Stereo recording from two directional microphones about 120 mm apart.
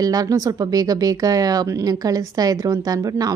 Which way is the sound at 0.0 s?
30° right (ahead or behind).